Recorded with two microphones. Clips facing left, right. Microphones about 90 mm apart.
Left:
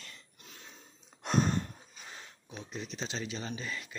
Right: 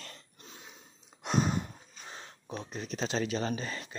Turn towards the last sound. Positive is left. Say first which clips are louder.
# right 5 dB
turn(degrees=-40)  # may be behind; listen again after turning